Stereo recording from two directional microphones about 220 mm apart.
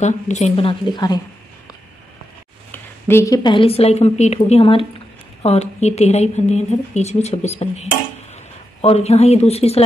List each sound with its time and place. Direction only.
0.0 s a woman's voice: 30° left (ahead or behind)
2.7 s a woman's voice: 10° left (ahead or behind); by 9.8 s 25° left (ahead or behind)